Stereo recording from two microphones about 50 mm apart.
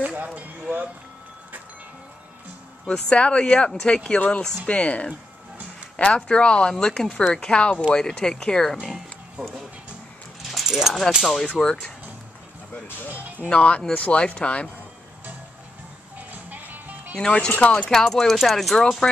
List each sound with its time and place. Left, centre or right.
0.0 s speech: right
2.9 s speech: left
8.9 s music: centre
10.7 s speech: centre
11.4 s speech: centre
13.1 s speech: right
13.5 s speech: left
16.2 s music: right
17.2 s speech: centre
17.8 s speech: centre